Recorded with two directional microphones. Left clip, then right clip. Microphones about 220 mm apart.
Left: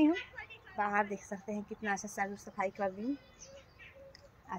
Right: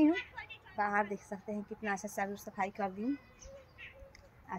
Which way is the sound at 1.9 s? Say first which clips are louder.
Left 1 dB; 15° right (ahead or behind).